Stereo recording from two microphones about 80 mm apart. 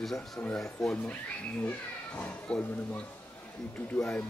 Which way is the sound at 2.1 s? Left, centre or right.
Centre.